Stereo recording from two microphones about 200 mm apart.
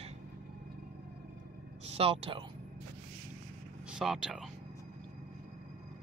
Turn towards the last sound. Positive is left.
turn(degrees=0)  # may be behind; listen again after turning